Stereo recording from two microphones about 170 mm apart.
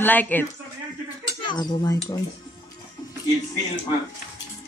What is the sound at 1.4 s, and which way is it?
Speech, 25° left (ahead or behind).